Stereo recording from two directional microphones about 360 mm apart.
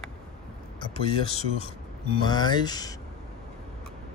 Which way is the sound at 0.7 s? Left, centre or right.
Centre.